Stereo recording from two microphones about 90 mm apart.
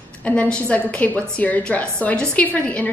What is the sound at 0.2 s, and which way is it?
A woman's voice, 15° left (ahead or behind).